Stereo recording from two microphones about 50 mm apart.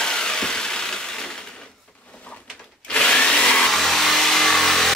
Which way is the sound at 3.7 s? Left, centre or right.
Centre.